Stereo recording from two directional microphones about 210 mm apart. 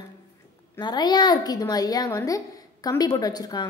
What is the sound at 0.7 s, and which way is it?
A woman's voice, 20° left (ahead or behind).